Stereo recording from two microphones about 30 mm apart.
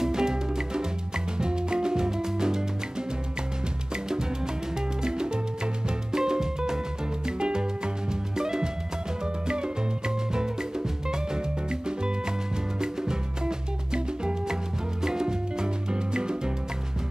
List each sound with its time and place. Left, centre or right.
0.0 s music: right
4.7 s music: right